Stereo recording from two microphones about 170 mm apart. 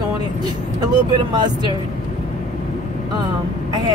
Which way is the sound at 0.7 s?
25° right (ahead or behind).